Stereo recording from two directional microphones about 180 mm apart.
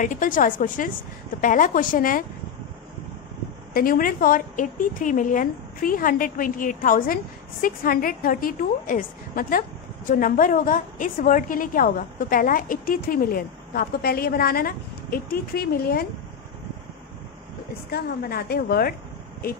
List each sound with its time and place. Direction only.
0.0 s a woman's voice: 45° left (ahead or behind)
3.7 s a woman's voice: 50° left (ahead or behind)
17.9 s a woman's voice: 60° left (ahead or behind)